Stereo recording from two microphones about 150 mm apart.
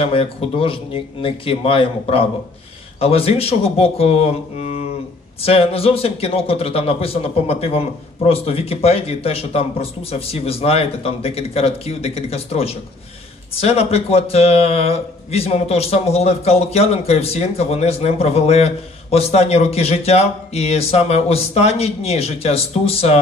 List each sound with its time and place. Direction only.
0.0 s a man's voice: 40° left (ahead or behind)